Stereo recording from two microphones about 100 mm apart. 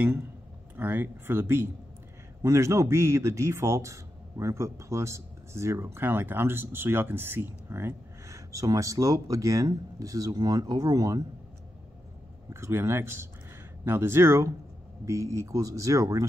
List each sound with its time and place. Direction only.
0.7 s a man's voice: 20° right (ahead or behind); by 11.2 s 35° right (ahead or behind)
12.5 s a man's voice: 25° right (ahead or behind)